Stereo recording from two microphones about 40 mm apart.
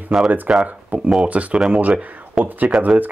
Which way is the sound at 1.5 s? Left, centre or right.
Right.